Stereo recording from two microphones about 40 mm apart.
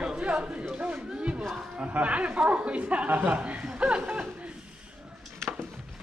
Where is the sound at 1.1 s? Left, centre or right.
Right.